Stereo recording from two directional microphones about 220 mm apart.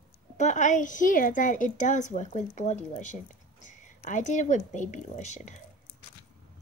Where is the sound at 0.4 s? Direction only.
35° left (ahead or behind).